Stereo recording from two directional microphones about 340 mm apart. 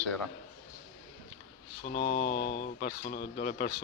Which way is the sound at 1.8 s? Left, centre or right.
Left.